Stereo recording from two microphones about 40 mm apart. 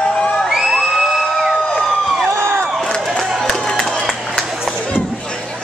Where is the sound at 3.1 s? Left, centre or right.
Centre.